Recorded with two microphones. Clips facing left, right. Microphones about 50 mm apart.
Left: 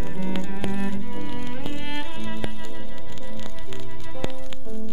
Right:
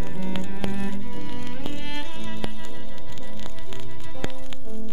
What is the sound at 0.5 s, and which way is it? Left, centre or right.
Cello, centre.